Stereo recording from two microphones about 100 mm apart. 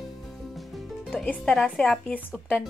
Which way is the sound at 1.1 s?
15° left (ahead or behind).